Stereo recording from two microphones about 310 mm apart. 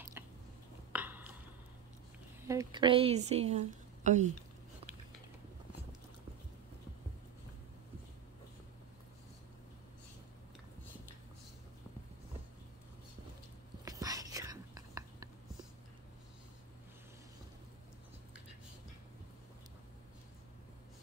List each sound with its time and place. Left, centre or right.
0.2 s a sound: centre
2.4 s a woman's voice: centre
13.8 s whispering: centre